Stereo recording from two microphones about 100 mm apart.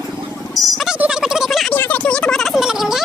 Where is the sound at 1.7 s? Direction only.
15° left (ahead or behind).